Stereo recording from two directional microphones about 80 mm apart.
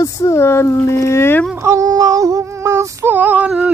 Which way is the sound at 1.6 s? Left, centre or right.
Right.